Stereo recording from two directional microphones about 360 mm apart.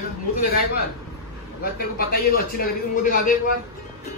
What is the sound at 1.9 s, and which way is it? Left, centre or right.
A man's voice, left.